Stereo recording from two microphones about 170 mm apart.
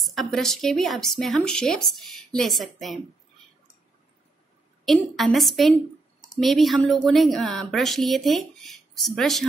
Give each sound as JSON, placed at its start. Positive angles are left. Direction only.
{"t": 0.0, "sound": "speech", "side_deg": 0}
{"t": 4.8, "sound": "speech", "side_deg": 0}